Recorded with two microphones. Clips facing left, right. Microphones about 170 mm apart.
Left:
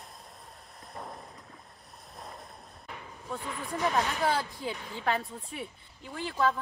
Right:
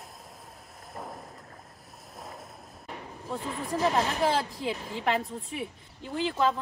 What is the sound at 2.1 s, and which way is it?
Vehicle, centre (ahead or behind).